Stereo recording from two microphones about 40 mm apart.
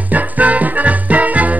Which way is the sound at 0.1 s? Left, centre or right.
Right.